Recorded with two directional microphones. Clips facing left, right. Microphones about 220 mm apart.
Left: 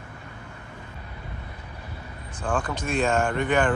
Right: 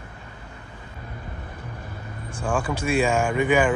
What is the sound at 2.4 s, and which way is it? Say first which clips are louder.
Speech: right 3 dB; 10° right (ahead or behind).